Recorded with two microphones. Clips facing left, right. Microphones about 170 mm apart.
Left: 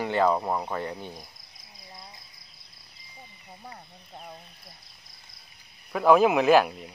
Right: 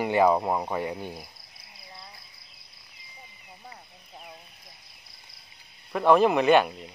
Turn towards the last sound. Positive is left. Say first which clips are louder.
# left 1 dB
turn(degrees=0)  # may be behind; listen again after turning